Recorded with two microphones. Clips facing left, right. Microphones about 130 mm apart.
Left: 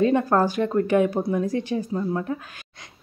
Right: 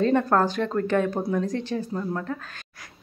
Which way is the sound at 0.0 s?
10° left (ahead or behind).